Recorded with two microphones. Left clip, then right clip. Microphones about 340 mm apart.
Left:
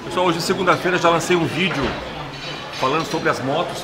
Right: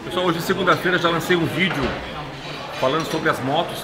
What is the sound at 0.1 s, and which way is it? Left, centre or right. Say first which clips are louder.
A man's voice: left 2 dB; centre.